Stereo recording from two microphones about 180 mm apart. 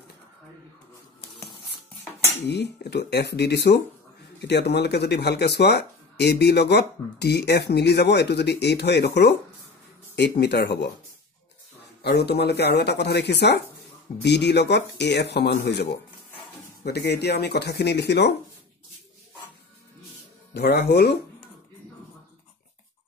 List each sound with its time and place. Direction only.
2.4 s speech: 70° left (ahead or behind)
12.0 s speech: 65° left (ahead or behind)
20.5 s speech: 65° left (ahead or behind)